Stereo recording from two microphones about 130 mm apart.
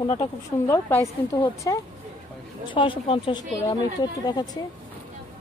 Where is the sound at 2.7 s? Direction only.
40° left (ahead or behind).